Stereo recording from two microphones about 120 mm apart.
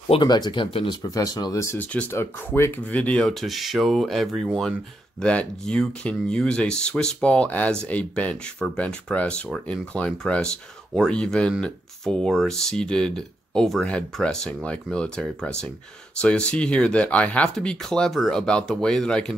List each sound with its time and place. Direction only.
0.2 s speech: 35° left (ahead or behind)
1.1 s speech: 30° left (ahead or behind)
1.8 s speech: 15° left (ahead or behind)